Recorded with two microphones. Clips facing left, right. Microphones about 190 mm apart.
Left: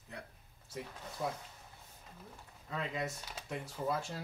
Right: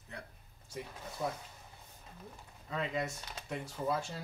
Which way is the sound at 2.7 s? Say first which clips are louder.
Right 2 dB; centre (ahead or behind).